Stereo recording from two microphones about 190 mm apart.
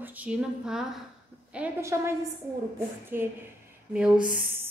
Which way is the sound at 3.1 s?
10° right (ahead or behind).